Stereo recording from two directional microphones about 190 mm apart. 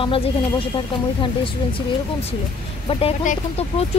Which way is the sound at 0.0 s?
30° left (ahead or behind).